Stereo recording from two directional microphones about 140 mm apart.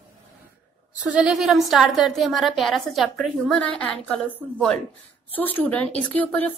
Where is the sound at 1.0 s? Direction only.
5° right (ahead or behind).